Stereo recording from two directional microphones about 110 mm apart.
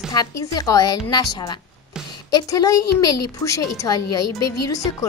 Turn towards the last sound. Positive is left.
turn(degrees=30)  # may be behind; listen again after turning